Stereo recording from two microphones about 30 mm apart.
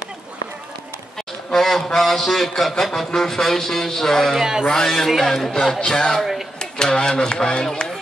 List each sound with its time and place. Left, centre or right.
1.5 s a man's voice: centre
4.4 s speech: right
4.6 s speech: centre
5.0 s a man's voice: centre
5.9 s speech: left